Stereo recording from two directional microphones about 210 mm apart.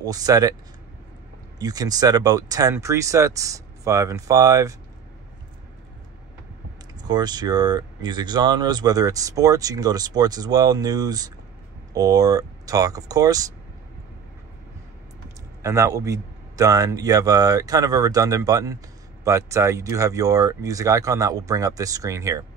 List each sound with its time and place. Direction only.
0.0 s speech: 15° right (ahead or behind)
1.6 s speech: 20° right (ahead or behind)
7.0 s speech: 20° right (ahead or behind)
15.6 s speech: 15° right (ahead or behind)